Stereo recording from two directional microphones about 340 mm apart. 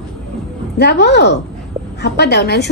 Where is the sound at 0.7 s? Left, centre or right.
Left.